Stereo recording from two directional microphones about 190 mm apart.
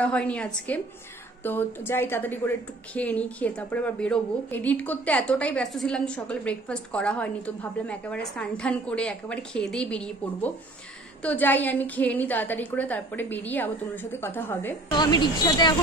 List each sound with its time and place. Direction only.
0.0 s a woman's voice: 5° left (ahead or behind)
14.9 s speech: 25° left (ahead or behind)